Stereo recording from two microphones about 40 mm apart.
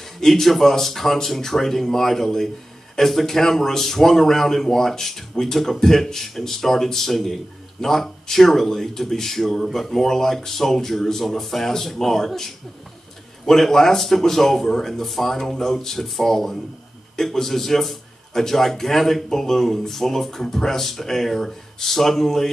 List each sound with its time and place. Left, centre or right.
0.2 s speech: centre